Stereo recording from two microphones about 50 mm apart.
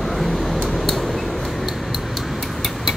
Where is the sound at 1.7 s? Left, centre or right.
Centre.